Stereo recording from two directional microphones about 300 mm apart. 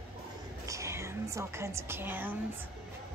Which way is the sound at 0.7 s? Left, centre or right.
Centre.